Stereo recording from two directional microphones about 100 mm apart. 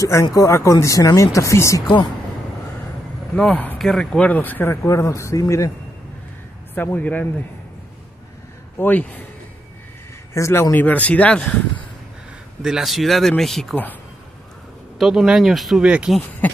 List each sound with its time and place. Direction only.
0.0 s speech: 35° left (ahead or behind)
3.3 s speech: 10° left (ahead or behind)
4.8 s speech: 30° left (ahead or behind)
6.7 s speech: 20° left (ahead or behind)
8.7 s speech: 20° left (ahead or behind)
10.3 s speech: 30° left (ahead or behind); by 11.5 s 10° left (ahead or behind)
12.6 s speech: centre (ahead or behind)
15.0 s speech: centre (ahead or behind)